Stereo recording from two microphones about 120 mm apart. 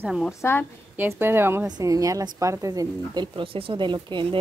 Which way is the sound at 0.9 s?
20° right (ahead or behind).